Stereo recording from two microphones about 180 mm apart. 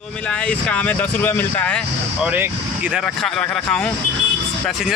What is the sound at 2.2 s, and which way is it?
Speech, 10° right (ahead or behind).